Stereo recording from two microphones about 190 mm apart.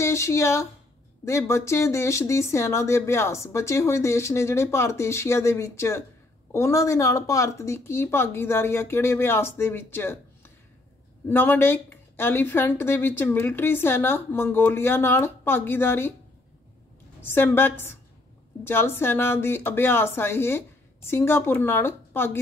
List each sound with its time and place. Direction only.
0.0 s speech: 15° left (ahead or behind)
17.2 s speech: 10° left (ahead or behind)